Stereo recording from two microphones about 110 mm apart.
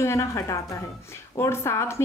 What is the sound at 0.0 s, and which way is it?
Speech, 25° left (ahead or behind).